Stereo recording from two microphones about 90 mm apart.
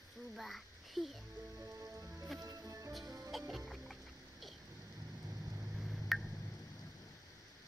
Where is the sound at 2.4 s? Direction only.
40° right (ahead or behind).